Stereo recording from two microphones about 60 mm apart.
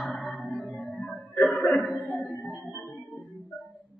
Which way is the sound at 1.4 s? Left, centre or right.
Left.